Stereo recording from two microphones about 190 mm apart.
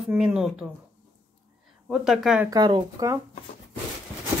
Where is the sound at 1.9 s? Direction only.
Centre (ahead or behind).